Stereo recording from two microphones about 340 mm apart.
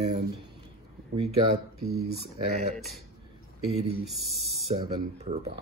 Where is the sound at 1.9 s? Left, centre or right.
Right.